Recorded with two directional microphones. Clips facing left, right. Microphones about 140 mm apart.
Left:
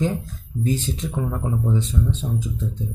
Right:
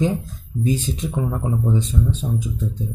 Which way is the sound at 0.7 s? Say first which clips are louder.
Right 2 dB; 15° right (ahead or behind).